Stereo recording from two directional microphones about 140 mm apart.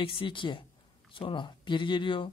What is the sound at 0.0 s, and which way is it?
A woman's voice, 40° left (ahead or behind).